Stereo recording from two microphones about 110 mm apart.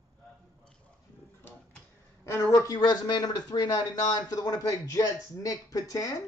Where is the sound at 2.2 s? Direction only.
30° left (ahead or behind).